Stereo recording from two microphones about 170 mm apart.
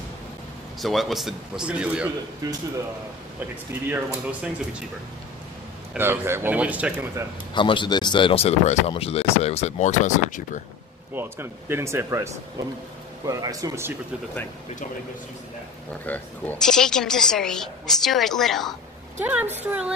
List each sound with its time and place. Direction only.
0.7 s a woman's voice: centre (ahead or behind)
2.4 s speech: 20° right (ahead or behind)
3.3 s speech: 10° right (ahead or behind)
5.9 s speech: 15° right (ahead or behind)
7.5 s speech: 30° left (ahead or behind); by 10.6 s 45° left (ahead or behind)
11.1 s speech: 15° right (ahead or behind)
16.1 s a woman's voice: 5° left (ahead or behind)
19.1 s speech: 10° right (ahead or behind)